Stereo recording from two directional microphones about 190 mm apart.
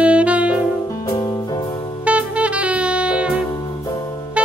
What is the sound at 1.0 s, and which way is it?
Music, 15° left (ahead or behind).